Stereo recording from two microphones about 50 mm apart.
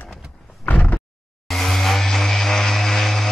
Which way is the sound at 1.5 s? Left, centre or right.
Centre.